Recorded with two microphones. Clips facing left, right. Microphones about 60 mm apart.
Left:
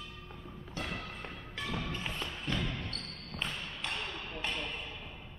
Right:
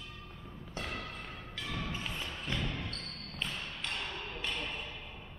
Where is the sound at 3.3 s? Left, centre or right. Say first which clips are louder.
Left 1 dB; centre.